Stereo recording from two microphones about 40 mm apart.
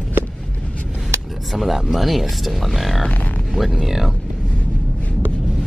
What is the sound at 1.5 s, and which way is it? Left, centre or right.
Speech, centre.